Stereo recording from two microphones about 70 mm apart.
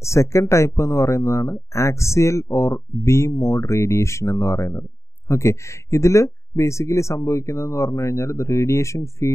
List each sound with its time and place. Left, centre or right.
0.0 s speech: left